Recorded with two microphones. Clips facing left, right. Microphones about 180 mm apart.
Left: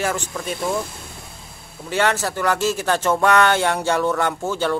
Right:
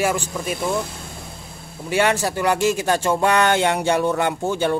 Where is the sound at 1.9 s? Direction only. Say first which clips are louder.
Right 1 dB; 15° right (ahead or behind).